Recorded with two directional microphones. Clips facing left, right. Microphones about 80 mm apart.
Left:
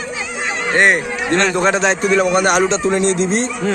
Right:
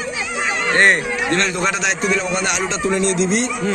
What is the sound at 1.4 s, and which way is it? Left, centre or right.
Speech, left.